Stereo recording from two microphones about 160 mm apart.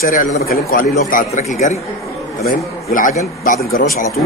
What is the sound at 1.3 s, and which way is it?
Speech, 45° left (ahead or behind).